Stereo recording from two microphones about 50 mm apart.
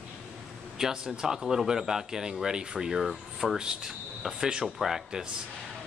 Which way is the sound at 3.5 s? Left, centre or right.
Centre.